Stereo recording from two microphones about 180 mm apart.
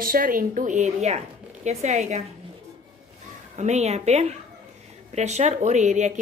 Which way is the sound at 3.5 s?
40° right (ahead or behind).